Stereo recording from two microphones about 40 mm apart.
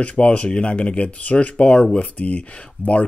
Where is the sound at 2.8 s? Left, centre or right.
Left.